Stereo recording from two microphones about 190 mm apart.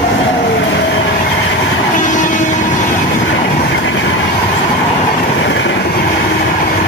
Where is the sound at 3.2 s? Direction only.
80° left.